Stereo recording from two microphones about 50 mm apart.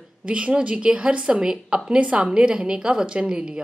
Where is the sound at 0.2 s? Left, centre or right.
Right.